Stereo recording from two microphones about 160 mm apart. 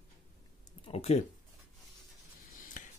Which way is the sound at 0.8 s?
40° left (ahead or behind).